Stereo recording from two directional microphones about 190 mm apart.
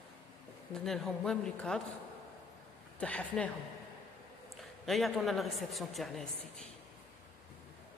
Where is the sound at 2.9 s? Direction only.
5° left (ahead or behind).